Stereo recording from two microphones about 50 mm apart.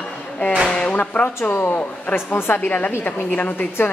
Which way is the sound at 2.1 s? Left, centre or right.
Left.